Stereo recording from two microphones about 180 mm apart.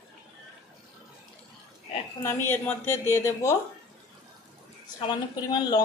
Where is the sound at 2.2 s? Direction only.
15° left (ahead or behind).